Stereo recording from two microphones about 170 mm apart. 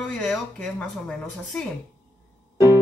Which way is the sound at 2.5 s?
15° right (ahead or behind).